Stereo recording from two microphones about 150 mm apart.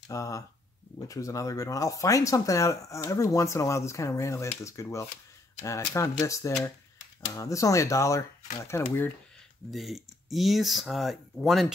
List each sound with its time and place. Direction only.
0.1 s speech: 20° left (ahead or behind)
9.7 s speech: centre (ahead or behind)